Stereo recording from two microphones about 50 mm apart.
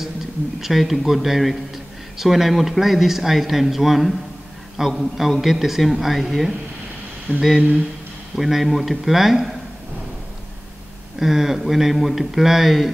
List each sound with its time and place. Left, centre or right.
0.6 s a man's voice: centre
7.3 s speech: right
8.4 s a man's voice: centre
11.1 s a man's voice: centre